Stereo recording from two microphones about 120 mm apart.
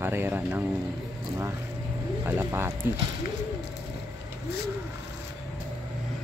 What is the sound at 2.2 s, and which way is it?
Speech, 20° right (ahead or behind).